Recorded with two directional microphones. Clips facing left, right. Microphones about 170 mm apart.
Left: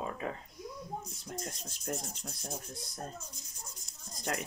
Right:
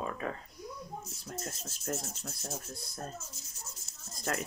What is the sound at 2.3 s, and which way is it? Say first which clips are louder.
Speech: right 1 dB; 5° right (ahead or behind).